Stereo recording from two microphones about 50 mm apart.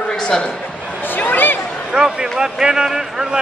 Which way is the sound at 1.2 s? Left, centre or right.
Left.